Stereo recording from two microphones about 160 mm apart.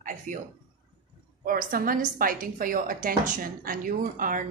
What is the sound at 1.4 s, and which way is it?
A woman's voice, 65° right (ahead or behind).